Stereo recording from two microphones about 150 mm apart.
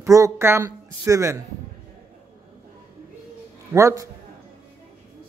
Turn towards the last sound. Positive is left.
turn(degrees=-20)  # may be behind; listen again after turning